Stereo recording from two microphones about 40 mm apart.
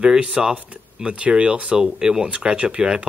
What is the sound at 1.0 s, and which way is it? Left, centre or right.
Speech, right.